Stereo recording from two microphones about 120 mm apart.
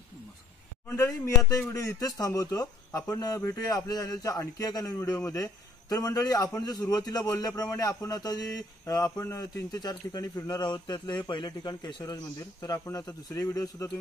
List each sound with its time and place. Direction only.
0.8 s a man's voice: 25° left (ahead or behind)